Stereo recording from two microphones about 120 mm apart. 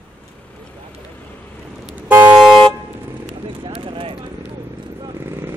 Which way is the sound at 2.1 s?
15° right (ahead or behind).